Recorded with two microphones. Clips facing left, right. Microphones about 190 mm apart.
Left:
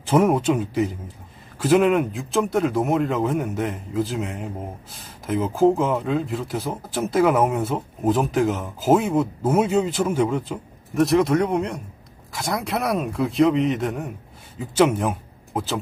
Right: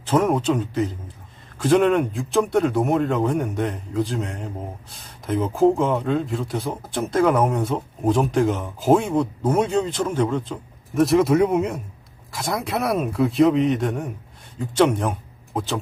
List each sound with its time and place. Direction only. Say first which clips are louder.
0.0 s speech: left 1 dB; 10° left (ahead or behind)